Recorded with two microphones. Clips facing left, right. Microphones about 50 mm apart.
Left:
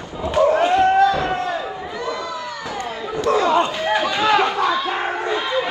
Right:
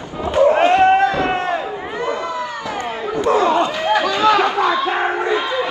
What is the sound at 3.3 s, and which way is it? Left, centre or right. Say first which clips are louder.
Chatter: right 2 dB; right.